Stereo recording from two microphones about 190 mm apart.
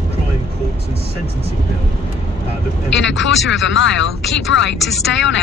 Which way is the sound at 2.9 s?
75° left (ahead or behind).